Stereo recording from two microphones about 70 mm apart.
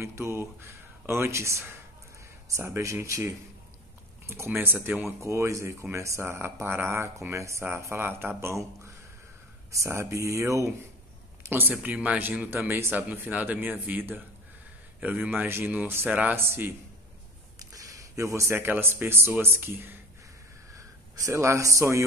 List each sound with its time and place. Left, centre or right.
0.0 s speech: right
5.2 s speech: right
7.8 s speech: right
11.7 s speech: right
17.6 s a man's voice: right
20.7 s a man's voice: right